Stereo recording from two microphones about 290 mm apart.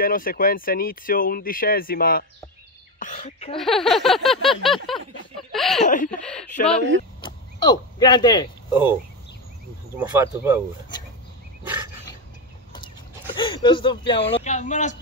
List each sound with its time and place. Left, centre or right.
0.0 s speech: left
3.5 s speech: centre
7.2 s speech: centre
8.6 s speech: centre
9.9 s speech: centre
12.7 s a sound: centre